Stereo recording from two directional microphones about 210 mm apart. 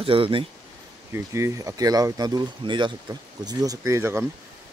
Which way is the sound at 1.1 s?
15° right (ahead or behind).